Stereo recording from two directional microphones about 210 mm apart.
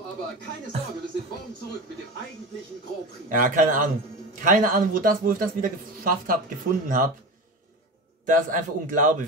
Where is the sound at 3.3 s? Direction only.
40° right (ahead or behind).